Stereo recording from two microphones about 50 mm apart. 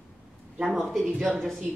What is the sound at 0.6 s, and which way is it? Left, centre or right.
Speech, centre.